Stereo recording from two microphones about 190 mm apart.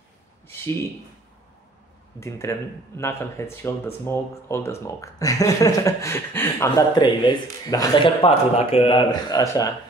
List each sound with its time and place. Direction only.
2.1 s speech: 15° left (ahead or behind)